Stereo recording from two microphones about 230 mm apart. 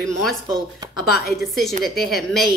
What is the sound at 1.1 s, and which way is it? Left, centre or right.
Speech, left.